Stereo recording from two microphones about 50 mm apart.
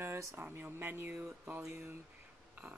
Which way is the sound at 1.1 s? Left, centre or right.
Right.